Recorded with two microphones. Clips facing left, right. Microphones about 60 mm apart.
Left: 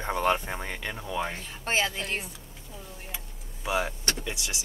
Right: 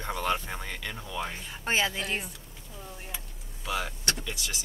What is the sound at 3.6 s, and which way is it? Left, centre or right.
Speech, left.